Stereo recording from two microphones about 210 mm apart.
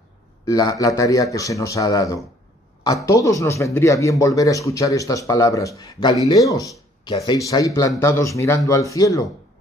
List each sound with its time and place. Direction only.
0.5 s speech: 15° left (ahead or behind)